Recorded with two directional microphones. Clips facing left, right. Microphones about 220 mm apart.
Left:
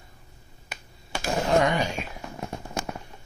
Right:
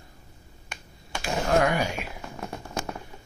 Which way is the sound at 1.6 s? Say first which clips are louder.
Even; 10° right (ahead or behind).